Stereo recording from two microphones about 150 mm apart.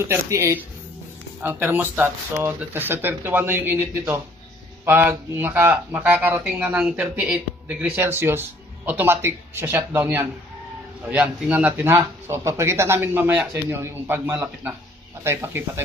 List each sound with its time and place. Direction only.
0.0 s speech: 15° right (ahead or behind)